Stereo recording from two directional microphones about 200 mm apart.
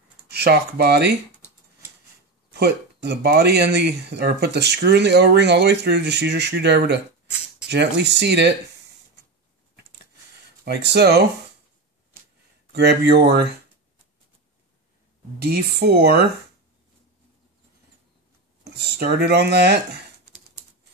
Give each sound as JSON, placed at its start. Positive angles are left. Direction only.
{"t": 0.3, "sound": "speech", "side_deg": -55}
{"t": 2.5, "sound": "speech", "side_deg": -55}
{"t": 10.6, "sound": "speech", "side_deg": -55}
{"t": 12.7, "sound": "speech", "side_deg": -55}
{"t": 15.3, "sound": "speech", "side_deg": -50}
{"t": 18.6, "sound": "speech", "side_deg": -55}